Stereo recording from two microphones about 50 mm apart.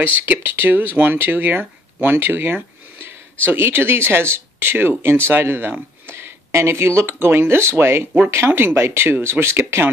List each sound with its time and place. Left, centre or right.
0.5 s speech: right